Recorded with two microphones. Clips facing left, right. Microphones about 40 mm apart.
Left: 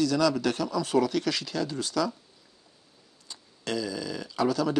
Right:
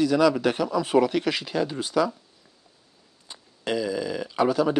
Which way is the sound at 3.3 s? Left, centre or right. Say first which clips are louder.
Right 4 dB; right.